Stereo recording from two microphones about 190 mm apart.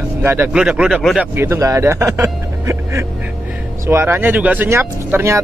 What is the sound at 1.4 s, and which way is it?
Speech, 15° right (ahead or behind).